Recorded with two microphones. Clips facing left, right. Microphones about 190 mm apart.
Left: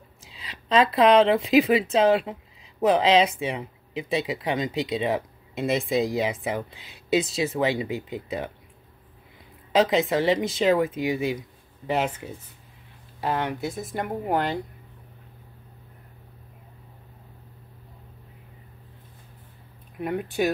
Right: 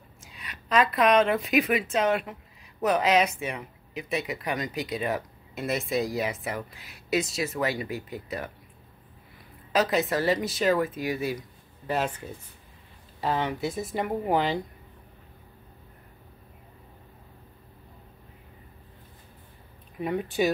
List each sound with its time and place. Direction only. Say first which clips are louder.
0.5 s speech: left 3 dB; 25° left (ahead or behind)
9.7 s speech: left 4 dB; 20° left (ahead or behind)
13.2 s a woman's voice: left 1 dB; 5° left (ahead or behind)
20.0 s a woman's voice: left 1 dB; centre (ahead or behind)